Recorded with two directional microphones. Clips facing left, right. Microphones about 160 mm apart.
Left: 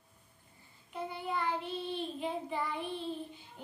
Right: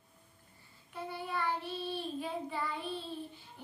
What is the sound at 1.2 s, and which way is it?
Child singing, 20° left (ahead or behind).